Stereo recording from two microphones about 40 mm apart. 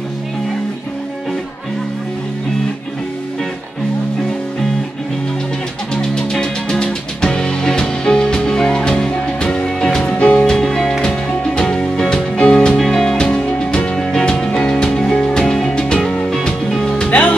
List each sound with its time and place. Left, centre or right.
6.3 s music: centre
10.0 s music: left
10.4 s music: centre
12.7 s music: centre
13.0 s music: left
17.1 s music: left